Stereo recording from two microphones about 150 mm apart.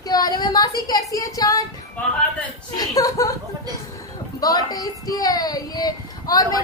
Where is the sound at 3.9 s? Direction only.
25° left (ahead or behind).